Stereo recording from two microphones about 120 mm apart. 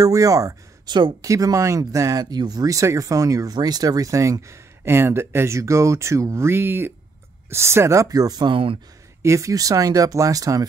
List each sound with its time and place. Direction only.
0.0 s speech: 30° right (ahead or behind)
1.3 s speech: 25° right (ahead or behind)